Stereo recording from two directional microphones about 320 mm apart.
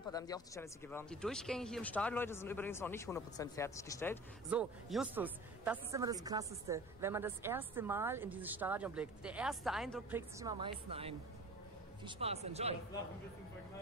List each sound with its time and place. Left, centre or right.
0.1 s speech: centre
4.5 s speech: centre
10.4 s a woman's voice: centre